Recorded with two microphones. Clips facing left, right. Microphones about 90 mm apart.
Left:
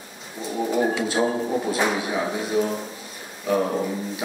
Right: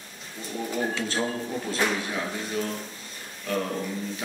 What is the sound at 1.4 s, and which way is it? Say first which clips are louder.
Speech: left 7 dB; 25° left (ahead or behind).